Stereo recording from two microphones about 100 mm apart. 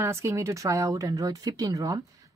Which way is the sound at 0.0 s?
30° right (ahead or behind).